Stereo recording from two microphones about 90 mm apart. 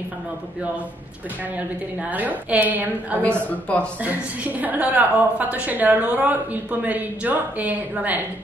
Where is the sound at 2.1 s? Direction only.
20° right (ahead or behind).